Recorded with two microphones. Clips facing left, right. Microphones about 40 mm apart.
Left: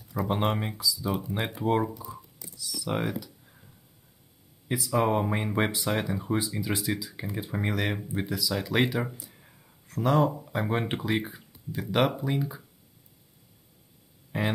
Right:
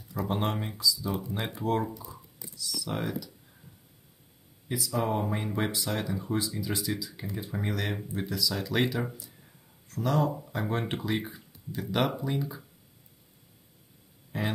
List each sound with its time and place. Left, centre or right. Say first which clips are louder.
0.1 s speech: left 3 dB; centre
1.9 s speech: left 2 dB; centre; by 3.5 s left
4.6 s speech: left 4 dB; left
14.3 s speech: left 3 dB; centre